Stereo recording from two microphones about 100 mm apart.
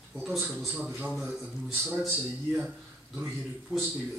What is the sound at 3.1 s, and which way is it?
Speech, 5° right (ahead or behind).